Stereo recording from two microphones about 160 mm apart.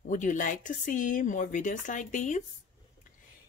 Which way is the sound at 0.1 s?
55° left (ahead or behind).